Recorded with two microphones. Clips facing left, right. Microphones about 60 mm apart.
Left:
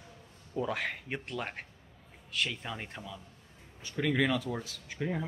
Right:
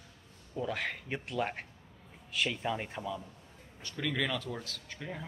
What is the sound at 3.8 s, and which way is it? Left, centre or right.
Speech, centre.